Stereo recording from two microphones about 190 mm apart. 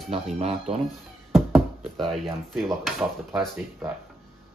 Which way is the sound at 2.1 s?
Centre (ahead or behind).